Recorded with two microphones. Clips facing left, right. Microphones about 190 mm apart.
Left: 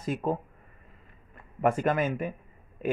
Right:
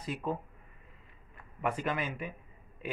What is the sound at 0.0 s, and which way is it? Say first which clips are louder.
Speech: left 6 dB; 45° left (ahead or behind).